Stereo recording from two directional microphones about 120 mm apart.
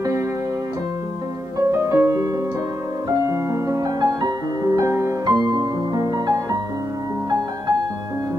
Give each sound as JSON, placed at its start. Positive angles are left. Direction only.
{"t": 1.7, "sound": "music", "side_deg": -20}
{"t": 3.3, "sound": "music", "side_deg": -25}